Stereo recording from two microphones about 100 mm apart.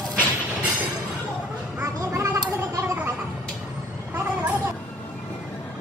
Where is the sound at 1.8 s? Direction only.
30° right (ahead or behind).